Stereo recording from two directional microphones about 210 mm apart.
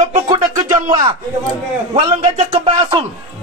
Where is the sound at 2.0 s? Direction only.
25° right (ahead or behind).